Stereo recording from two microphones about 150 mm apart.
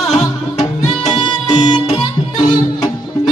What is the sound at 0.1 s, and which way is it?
Music, 45° left (ahead or behind).